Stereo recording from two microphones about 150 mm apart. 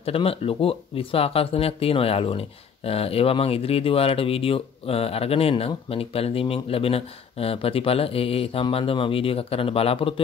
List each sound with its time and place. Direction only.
0.0 s speech: 40° left (ahead or behind)